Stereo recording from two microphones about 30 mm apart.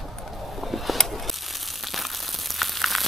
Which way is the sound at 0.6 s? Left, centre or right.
Centre.